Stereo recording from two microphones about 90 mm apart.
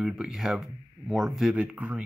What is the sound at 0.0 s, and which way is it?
Speech, 5° right (ahead or behind).